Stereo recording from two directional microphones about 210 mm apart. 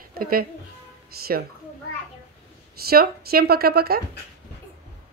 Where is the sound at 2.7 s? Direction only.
45° right (ahead or behind).